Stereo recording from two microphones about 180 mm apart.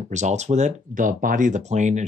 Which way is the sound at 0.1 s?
40° right (ahead or behind).